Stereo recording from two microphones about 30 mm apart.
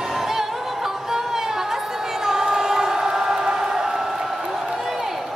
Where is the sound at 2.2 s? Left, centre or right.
Centre.